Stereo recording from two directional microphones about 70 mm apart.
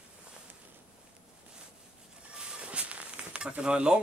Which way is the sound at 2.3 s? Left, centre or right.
Centre.